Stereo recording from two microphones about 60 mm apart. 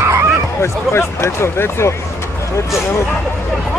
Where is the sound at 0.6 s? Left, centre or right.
Left.